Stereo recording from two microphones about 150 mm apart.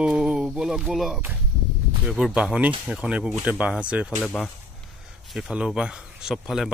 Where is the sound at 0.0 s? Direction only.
5° right (ahead or behind).